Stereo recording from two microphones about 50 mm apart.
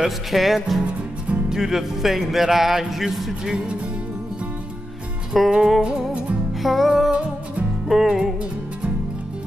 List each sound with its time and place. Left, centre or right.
0.0 s speech: centre
5.3 s music: centre
6.6 s speech: centre
7.9 s music: centre